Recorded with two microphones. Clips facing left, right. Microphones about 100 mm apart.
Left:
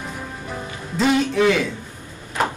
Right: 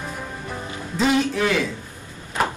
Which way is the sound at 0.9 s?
Centre (ahead or behind).